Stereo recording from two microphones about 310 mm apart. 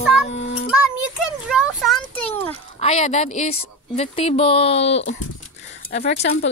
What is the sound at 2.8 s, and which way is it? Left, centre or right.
Speech, centre.